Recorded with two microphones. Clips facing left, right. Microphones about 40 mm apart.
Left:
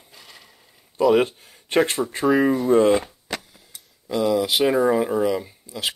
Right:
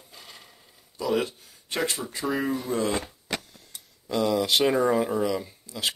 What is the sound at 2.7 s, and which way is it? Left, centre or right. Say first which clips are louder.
Speech: left 13 dB; left.